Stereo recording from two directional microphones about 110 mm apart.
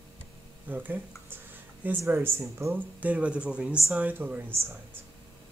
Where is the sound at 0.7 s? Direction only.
15° right (ahead or behind).